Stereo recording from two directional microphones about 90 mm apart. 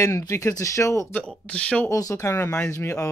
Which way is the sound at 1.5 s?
15° left (ahead or behind).